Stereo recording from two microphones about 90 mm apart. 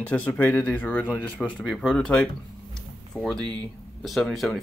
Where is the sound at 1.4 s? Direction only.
5° left (ahead or behind).